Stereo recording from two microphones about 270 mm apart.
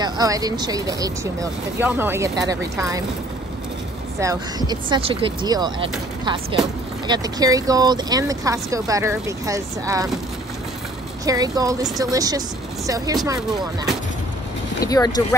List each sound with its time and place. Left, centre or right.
0.0 s speech: centre
4.2 s speech: centre
11.2 s speech: centre
14.9 s speech: centre